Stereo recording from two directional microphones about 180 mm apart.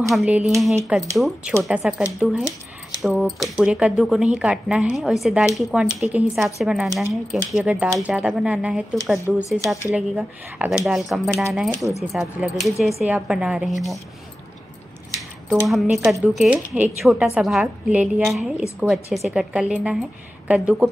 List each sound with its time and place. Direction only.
0.1 s speech: 5° right (ahead or behind)
6.9 s speech: 15° right (ahead or behind)
7.5 s speech: 5° right (ahead or behind)
15.1 s a sound: centre (ahead or behind)
16.1 s speech: 5° right (ahead or behind)